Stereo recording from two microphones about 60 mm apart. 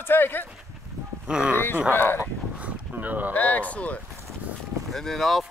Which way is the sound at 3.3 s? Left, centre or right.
Left.